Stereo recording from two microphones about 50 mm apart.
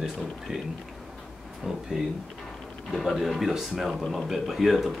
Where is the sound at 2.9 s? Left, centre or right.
Centre.